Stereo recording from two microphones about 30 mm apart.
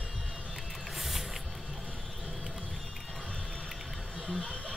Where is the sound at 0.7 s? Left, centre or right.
Centre.